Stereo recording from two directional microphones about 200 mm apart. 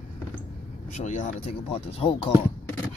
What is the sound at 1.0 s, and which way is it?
Speech, 35° left (ahead or behind).